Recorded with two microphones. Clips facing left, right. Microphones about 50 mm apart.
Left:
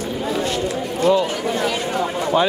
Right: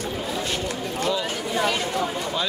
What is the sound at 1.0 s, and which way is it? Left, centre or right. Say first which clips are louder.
Speech: left 9 dB; left.